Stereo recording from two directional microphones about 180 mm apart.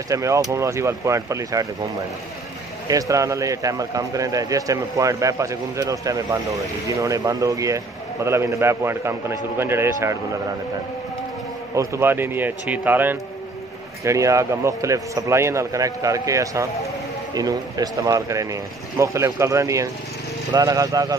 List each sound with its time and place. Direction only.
0.1 s a man's voice: 15° right (ahead or behind)
2.9 s a man's voice: 20° right (ahead or behind)
11.7 s a man's voice: 15° right (ahead or behind)